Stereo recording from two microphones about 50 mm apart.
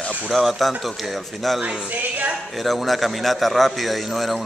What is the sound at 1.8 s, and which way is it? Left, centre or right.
Speech, right.